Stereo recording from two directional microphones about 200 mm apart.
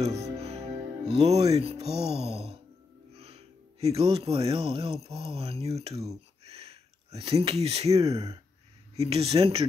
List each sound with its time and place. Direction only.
0.0 s music: 30° right (ahead or behind)
3.2 s speech: 30° right (ahead or behind)
6.4 s a sound: 30° right (ahead or behind)
7.2 s speech: 30° right (ahead or behind)